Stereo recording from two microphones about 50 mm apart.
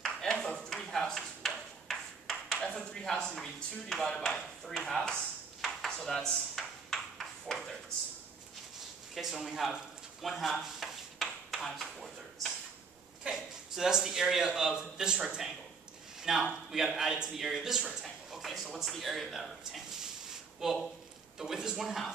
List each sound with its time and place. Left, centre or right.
0.0 s ping: centre
2.7 s a sound: left
3.0 s speech: centre
5.9 s ping: centre
9.1 s a man's voice: centre
10.2 s a sound: centre
13.2 s a man's voice: centre
20.6 s speech: centre